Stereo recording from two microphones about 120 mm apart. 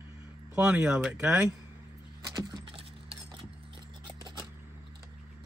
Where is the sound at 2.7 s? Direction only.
50° right (ahead or behind).